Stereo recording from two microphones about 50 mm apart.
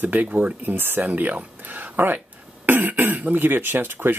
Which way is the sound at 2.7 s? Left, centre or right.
Right.